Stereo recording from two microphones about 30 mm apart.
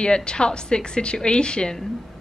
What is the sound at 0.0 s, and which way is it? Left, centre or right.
A woman's voice, left.